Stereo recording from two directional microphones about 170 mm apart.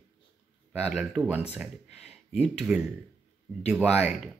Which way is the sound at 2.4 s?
5° right (ahead or behind).